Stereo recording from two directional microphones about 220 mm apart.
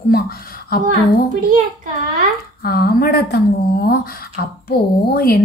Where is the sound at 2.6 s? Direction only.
45° left (ahead or behind).